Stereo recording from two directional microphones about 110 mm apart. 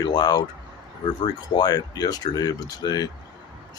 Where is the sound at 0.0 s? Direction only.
40° left (ahead or behind).